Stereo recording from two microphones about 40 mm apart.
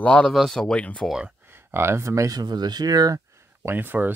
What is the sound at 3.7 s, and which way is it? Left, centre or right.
Speech, right.